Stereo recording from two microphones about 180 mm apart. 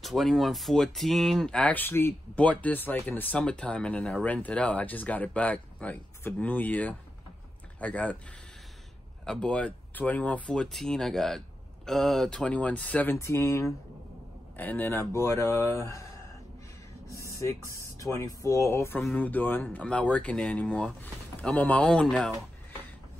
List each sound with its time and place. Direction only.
0.0 s speech: centre (ahead or behind)
9.2 s speech: 5° left (ahead or behind)
17.7 s speech: 15° left (ahead or behind)